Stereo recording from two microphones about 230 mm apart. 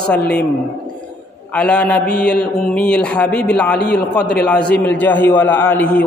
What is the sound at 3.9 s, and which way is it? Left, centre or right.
Speech, left.